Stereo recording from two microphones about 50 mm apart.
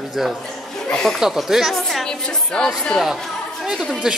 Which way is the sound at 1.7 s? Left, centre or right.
Centre.